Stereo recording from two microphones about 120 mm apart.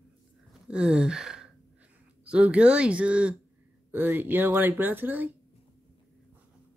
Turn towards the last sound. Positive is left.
turn(degrees=-15)  # may be behind; listen again after turning